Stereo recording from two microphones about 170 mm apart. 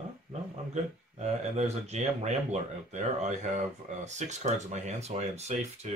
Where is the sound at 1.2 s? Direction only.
40° right (ahead or behind).